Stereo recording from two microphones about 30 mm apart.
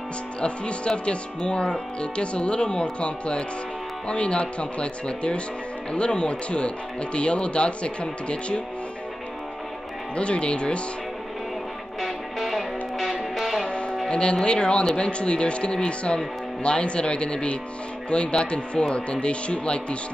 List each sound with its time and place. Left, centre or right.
0.4 s speech: left
10.1 s speech: left
12.0 s music: centre
13.7 s music: left
14.4 s speech: left